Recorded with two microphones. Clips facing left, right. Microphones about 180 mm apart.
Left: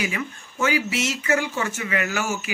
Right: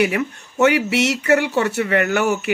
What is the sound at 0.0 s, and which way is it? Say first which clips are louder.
Speech: right 9 dB; 65° right (ahead or behind).